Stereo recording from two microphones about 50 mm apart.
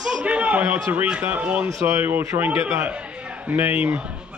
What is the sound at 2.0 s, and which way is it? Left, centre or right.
Speech, right.